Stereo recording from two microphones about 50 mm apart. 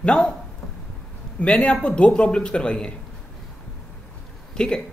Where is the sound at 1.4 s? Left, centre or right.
Left.